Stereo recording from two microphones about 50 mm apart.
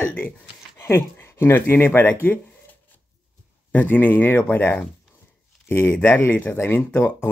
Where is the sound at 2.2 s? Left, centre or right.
Left.